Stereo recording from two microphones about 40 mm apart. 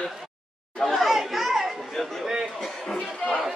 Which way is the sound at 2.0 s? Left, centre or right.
Centre.